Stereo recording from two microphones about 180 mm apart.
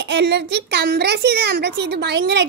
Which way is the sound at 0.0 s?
70° right (ahead or behind).